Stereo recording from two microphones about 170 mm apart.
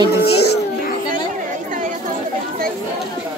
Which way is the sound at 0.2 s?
75° left (ahead or behind).